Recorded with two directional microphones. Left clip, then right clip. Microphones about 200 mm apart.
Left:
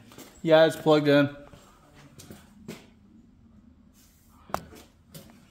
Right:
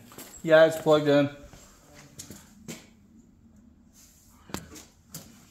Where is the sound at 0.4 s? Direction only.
30° left (ahead or behind).